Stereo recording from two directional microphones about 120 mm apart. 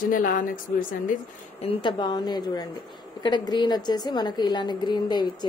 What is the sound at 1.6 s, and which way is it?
A woman's voice, 40° left (ahead or behind).